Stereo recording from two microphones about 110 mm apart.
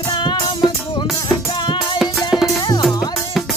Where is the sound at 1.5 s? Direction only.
45° left (ahead or behind).